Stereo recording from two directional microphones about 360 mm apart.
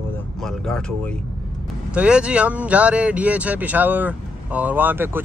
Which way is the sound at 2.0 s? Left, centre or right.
Centre.